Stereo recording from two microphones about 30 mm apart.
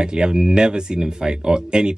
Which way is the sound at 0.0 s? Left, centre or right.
Right.